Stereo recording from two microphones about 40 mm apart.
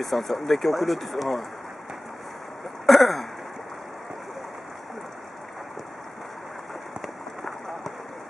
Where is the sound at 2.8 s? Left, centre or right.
Centre.